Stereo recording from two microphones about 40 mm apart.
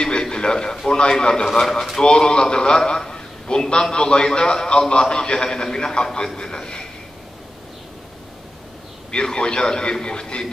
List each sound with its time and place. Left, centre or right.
0.0 s a sound: left
0.8 s a man's voice: left
1.5 s speech: centre
2.0 s a man's voice: left
9.1 s a man's voice: left